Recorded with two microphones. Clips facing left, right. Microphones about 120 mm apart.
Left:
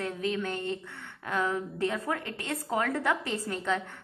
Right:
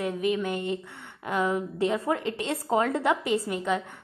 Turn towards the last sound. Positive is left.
turn(degrees=-15)  # may be behind; listen again after turning